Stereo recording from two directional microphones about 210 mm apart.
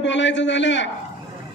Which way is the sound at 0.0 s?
60° left (ahead or behind).